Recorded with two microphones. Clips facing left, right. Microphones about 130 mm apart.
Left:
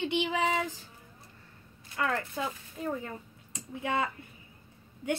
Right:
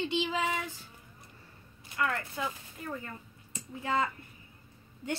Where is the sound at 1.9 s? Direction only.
25° left (ahead or behind).